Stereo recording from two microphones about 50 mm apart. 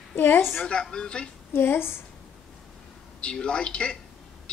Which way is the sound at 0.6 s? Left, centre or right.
Centre.